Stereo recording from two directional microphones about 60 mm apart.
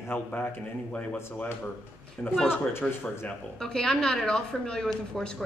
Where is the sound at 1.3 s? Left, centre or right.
Left.